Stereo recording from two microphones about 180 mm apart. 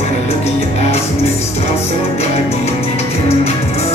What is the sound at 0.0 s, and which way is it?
Music, 35° left (ahead or behind).